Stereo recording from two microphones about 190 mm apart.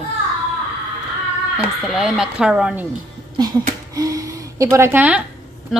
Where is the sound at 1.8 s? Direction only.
Centre (ahead or behind).